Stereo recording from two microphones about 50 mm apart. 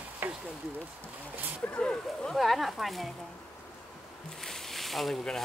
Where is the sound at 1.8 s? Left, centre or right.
Left.